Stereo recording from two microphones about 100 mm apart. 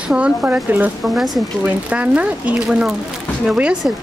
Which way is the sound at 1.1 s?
Centre (ahead or behind).